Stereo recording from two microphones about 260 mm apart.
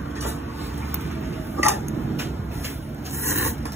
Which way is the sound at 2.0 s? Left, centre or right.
Right.